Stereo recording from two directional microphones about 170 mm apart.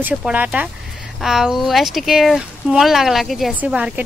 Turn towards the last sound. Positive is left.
turn(degrees=-10)  # may be behind; listen again after turning